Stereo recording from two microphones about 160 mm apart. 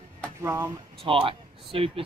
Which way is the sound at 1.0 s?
35° right (ahead or behind).